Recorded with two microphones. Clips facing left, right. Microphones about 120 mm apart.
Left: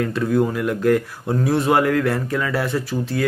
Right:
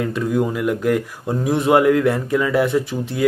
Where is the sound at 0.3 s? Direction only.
10° right (ahead or behind).